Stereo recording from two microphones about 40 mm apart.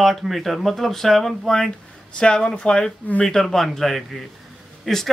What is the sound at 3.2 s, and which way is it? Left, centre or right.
A man's voice, centre.